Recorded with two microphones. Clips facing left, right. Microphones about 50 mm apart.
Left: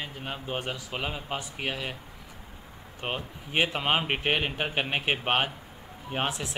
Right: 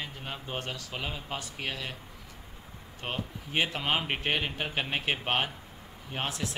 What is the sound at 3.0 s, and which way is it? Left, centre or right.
Speech, centre.